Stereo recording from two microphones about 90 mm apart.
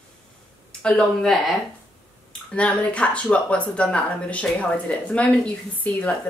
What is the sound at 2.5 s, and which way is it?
Speech, 15° left (ahead or behind).